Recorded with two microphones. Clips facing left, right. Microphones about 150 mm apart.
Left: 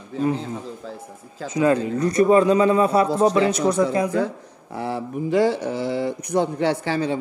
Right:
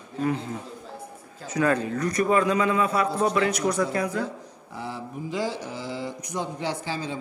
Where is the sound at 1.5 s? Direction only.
20° left (ahead or behind).